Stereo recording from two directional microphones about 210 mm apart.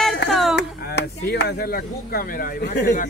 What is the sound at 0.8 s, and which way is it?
Speech, 50° left (ahead or behind).